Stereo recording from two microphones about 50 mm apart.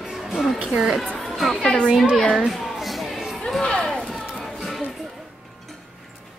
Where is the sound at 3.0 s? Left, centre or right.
Centre.